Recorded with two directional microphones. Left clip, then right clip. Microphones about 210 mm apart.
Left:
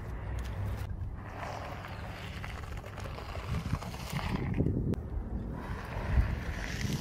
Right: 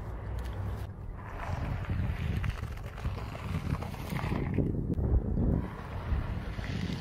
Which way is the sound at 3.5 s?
10° left (ahead or behind).